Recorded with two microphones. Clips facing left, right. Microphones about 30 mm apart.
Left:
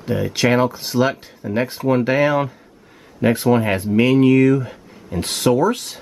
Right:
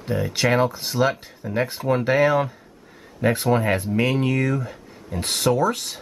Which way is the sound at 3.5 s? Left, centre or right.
Centre.